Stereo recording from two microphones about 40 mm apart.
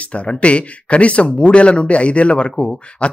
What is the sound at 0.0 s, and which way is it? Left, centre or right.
Speech, left.